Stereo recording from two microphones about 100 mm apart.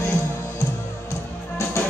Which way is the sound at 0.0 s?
30° left (ahead or behind).